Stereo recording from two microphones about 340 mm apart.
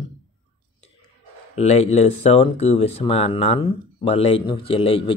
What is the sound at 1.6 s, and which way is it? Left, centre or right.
Speech, centre.